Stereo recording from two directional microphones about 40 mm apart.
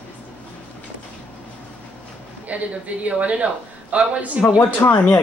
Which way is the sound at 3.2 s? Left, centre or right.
Right.